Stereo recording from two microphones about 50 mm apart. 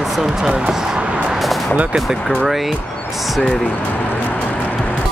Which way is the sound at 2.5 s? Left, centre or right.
Centre.